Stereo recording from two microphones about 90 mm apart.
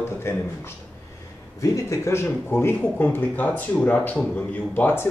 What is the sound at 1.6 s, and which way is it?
Speech, 35° left (ahead or behind).